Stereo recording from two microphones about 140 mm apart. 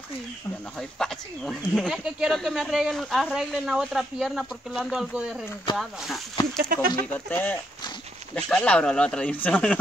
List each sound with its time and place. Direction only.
0.7 s speech: 5° left (ahead or behind)
6.6 s speech: 90° right
7.2 s speech: 10° left (ahead or behind)